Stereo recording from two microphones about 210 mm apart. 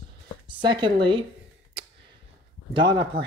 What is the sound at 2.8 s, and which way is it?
Speech, 20° right (ahead or behind).